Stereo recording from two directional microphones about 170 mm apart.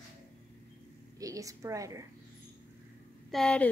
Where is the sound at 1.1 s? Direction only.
20° right (ahead or behind).